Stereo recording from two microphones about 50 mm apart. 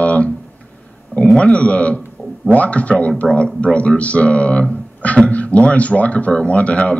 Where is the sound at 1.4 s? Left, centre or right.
Left.